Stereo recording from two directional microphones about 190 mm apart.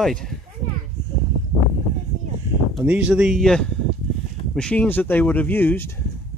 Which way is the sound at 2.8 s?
5° right (ahead or behind).